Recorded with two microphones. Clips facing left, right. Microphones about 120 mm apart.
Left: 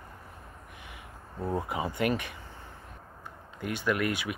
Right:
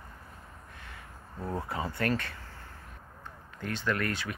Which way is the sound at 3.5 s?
15° left (ahead or behind).